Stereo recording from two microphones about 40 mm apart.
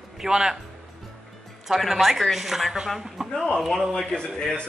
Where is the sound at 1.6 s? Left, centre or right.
Centre.